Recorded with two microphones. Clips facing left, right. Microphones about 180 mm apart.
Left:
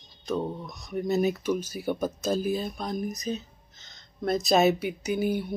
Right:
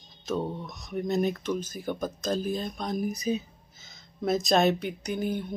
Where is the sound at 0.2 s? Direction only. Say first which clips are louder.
Left 1 dB; centre (ahead or behind).